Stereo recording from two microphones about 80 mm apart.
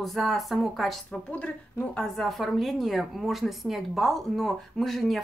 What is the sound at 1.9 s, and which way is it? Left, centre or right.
A woman's voice, centre.